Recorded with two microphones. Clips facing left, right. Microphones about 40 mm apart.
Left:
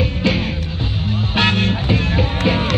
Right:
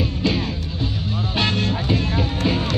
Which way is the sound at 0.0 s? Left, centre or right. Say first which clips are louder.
Left 3 dB; left.